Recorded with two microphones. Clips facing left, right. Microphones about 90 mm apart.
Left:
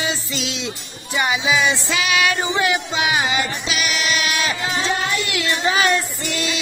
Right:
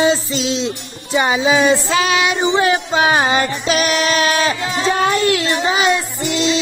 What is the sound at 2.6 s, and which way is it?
Music, 35° right (ahead or behind).